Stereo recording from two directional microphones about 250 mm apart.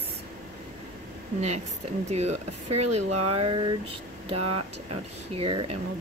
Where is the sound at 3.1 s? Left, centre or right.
Right.